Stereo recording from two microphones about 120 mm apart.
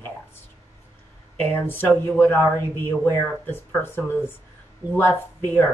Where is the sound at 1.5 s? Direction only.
15° left (ahead or behind).